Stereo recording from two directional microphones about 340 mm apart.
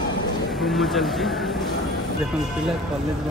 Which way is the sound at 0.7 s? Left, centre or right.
Centre.